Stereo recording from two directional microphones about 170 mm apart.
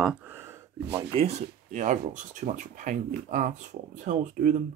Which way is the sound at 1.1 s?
40° right (ahead or behind).